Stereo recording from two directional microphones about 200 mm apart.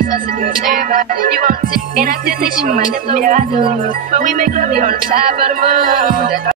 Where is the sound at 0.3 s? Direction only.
45° right (ahead or behind).